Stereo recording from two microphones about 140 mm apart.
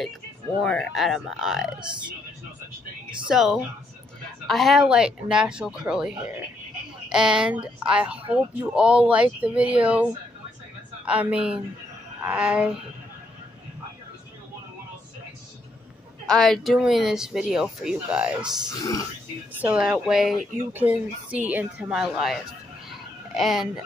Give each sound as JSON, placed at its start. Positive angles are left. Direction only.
{"t": 0.6, "sound": "speech", "side_deg": 5}
{"t": 3.3, "sound": "speech", "side_deg": -5}
{"t": 11.1, "sound": "speech", "side_deg": -10}
{"t": 16.3, "sound": "speech", "side_deg": 5}
{"t": 18.7, "sound": "speech", "side_deg": 25}
{"t": 19.6, "sound": "speech", "side_deg": -10}
{"t": 22.8, "sound": "a sound", "side_deg": 0}